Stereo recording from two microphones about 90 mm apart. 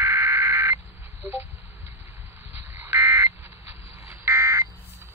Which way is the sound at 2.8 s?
25° right (ahead or behind).